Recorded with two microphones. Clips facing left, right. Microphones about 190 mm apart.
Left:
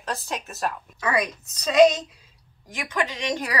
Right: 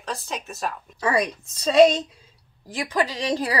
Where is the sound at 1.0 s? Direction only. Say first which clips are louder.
Right 3 dB; 30° right (ahead or behind).